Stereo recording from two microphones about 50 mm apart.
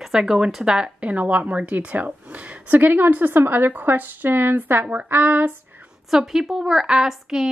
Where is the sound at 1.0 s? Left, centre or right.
Right.